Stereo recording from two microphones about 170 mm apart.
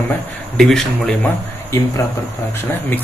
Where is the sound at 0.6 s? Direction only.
5° left (ahead or behind).